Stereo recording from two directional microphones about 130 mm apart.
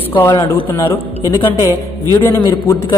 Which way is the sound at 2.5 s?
25° left (ahead or behind).